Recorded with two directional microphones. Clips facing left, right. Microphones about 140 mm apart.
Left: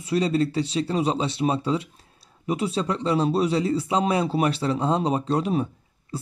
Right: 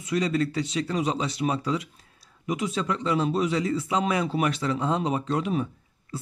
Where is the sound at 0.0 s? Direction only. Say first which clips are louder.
Left 3 dB; 30° left (ahead or behind).